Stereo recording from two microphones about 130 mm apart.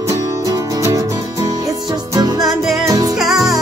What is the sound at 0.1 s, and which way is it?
Music, 25° right (ahead or behind).